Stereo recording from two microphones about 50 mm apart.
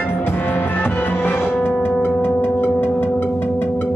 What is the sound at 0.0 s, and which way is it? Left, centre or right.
Music, left.